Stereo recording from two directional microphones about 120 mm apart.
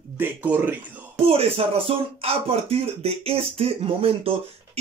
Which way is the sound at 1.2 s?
55° right (ahead or behind).